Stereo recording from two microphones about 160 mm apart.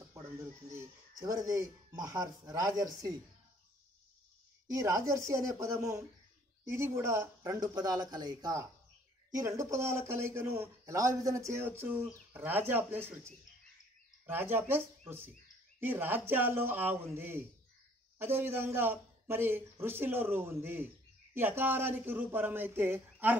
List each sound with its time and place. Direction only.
0.7 s speech: 20° right (ahead or behind)
4.6 s speech: 20° right (ahead or behind)